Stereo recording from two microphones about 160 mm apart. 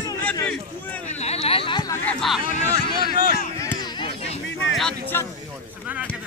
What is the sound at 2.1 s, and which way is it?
Speech, centre (ahead or behind).